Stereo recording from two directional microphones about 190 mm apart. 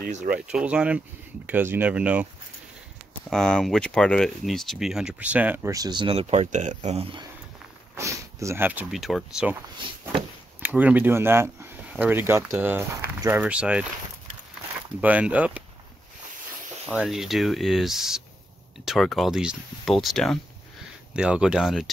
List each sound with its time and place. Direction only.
0.1 s speech: 40° right (ahead or behind)
0.5 s speech: 5° right (ahead or behind)
3.3 s speech: 5° left (ahead or behind); by 7.2 s 30° right (ahead or behind)
7.9 s speech: 15° right (ahead or behind)
10.6 s speech: 10° right (ahead or behind)
15.0 s speech: 5° right (ahead or behind)
17.0 s speech: centre (ahead or behind)